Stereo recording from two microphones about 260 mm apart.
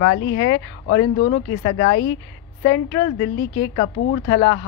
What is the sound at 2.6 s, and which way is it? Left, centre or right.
Speech, centre.